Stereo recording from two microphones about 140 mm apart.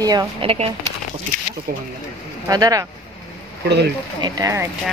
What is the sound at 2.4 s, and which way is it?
Speech, 25° right (ahead or behind).